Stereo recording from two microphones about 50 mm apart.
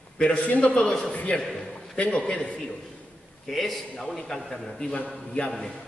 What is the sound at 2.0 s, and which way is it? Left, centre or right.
Speech, centre.